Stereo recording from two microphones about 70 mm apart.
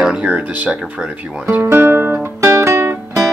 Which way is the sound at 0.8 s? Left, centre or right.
Centre.